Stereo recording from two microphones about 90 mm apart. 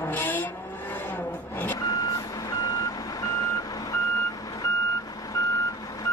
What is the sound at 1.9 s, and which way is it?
Reversing beeps, 40° left (ahead or behind).